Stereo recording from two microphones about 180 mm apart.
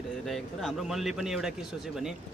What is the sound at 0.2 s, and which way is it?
Speech, centre (ahead or behind).